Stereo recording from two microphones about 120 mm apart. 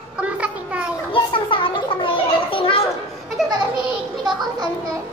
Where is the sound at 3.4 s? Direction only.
5° right (ahead or behind).